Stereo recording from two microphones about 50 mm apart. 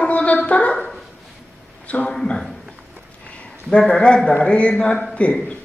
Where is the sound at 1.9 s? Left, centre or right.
Left.